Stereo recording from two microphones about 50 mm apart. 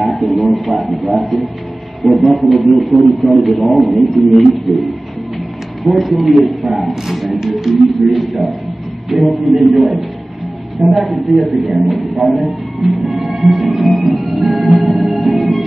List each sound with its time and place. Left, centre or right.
0.0 s a man's voice: centre
5.9 s a man's voice: centre
14.9 s music: centre